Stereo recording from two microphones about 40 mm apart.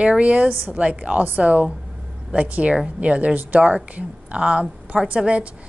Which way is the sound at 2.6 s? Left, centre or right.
Right.